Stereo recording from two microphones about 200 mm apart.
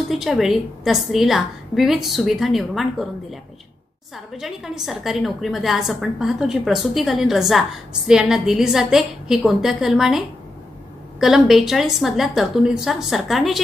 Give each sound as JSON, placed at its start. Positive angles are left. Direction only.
{"t": 0.1, "sound": "a woman's voice", "side_deg": 0}
{"t": 4.3, "sound": "a woman's voice", "side_deg": 0}